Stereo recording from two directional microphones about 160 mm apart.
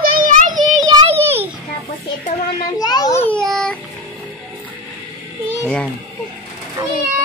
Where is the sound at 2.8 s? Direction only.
25° left (ahead or behind).